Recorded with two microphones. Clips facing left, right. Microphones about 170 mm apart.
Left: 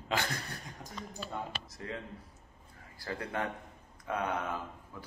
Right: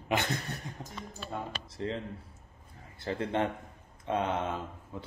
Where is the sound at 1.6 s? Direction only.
30° right (ahead or behind).